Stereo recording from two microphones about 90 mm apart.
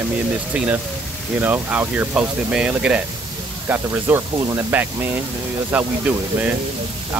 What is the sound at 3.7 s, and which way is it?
Speech, 25° right (ahead or behind).